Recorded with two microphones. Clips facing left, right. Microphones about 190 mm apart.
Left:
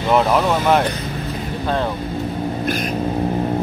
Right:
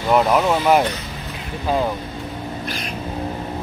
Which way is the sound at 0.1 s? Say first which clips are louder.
Even; 5° right (ahead or behind).